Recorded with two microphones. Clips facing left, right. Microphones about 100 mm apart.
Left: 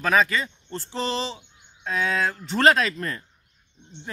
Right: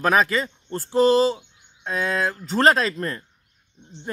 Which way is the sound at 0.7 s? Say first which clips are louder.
Right 11 dB; 45° right (ahead or behind).